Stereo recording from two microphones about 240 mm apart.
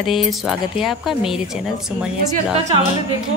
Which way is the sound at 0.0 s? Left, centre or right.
Centre.